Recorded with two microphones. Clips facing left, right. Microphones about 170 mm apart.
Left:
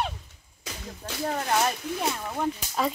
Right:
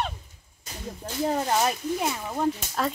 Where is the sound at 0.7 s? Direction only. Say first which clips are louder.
Left 2 dB; 90° left.